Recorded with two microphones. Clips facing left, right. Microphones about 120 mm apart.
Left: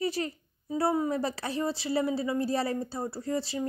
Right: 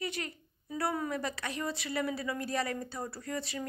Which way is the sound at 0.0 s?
35° left (ahead or behind).